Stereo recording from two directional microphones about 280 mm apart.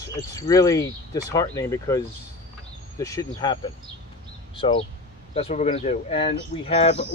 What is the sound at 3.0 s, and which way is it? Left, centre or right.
Speech, centre.